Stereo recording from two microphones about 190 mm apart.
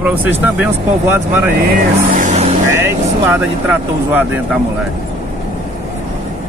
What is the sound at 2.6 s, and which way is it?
Vehicle, 15° right (ahead or behind).